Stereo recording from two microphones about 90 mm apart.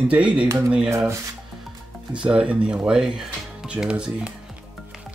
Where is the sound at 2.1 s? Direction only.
10° right (ahead or behind).